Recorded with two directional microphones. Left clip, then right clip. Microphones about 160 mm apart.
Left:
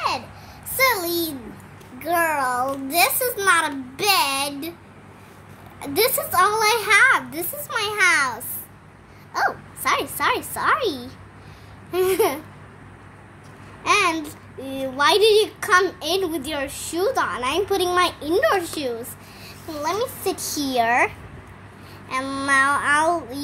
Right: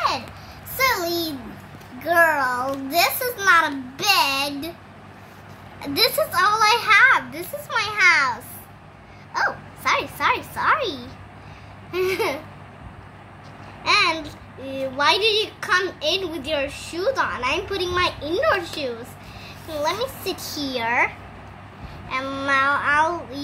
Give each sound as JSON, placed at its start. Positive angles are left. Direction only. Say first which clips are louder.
{"t": 0.7, "sound": "a sound", "louder": "left 1 dB", "side_deg": 50}
{"t": 5.8, "sound": "a child's voice", "louder": "right 1 dB", "side_deg": 45}
{"t": 13.8, "sound": "babbling", "louder": "even", "side_deg": 65}
{"t": 15.6, "sound": "a woman's voice", "louder": "left 2 dB", "side_deg": 60}
{"t": 20.0, "sound": "a child's voice", "louder": "left 2 dB", "side_deg": 45}
{"t": 22.1, "sound": "a woman's voice", "louder": "left 1 dB", "side_deg": 50}